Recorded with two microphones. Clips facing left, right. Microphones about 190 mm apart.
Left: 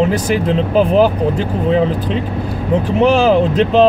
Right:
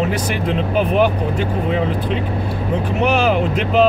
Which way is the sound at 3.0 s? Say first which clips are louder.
Left 5 dB; 35° left (ahead or behind).